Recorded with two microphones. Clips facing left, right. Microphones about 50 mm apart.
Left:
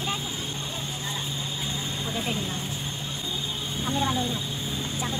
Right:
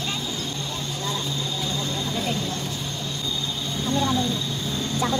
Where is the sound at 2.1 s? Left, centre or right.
Centre.